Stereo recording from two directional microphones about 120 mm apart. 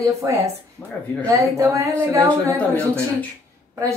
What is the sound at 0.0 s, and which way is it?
Speech, 25° right (ahead or behind).